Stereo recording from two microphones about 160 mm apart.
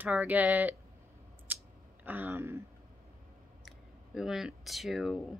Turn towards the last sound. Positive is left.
turn(degrees=0)  # may be behind; listen again after turning